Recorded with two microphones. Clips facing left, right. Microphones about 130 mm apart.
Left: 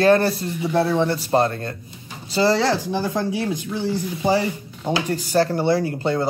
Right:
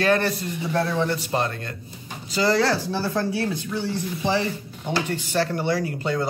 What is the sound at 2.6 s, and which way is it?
A man's voice, 15° left (ahead or behind).